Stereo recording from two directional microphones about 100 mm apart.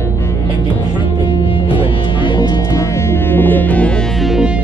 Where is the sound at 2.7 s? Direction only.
25° left (ahead or behind).